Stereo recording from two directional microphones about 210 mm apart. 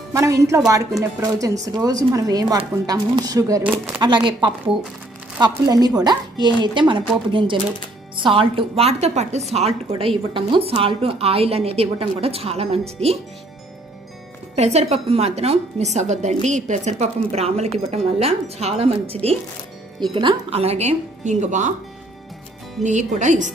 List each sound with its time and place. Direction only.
0.1 s a woman's voice: 15° right (ahead or behind)
14.5 s a woman's voice: 30° right (ahead or behind)
22.8 s a woman's voice: 35° right (ahead or behind)